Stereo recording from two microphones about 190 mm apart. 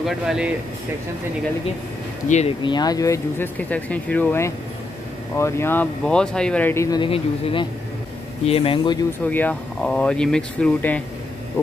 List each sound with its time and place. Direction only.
0.0 s speech: 5° right (ahead or behind)
2.2 s speech: 35° left (ahead or behind)
2.6 s speech: 20° left (ahead or behind)
9.2 s speech: 10° left (ahead or behind)